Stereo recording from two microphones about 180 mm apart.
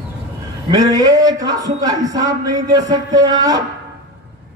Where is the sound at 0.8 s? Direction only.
20° right (ahead or behind).